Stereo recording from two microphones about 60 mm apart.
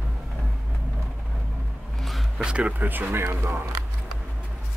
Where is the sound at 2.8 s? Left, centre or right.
Right.